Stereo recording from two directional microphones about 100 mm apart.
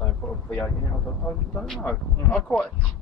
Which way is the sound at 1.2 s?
5° left (ahead or behind).